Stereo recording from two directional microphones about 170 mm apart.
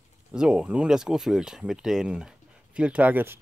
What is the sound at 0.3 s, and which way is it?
Speech, 5° right (ahead or behind).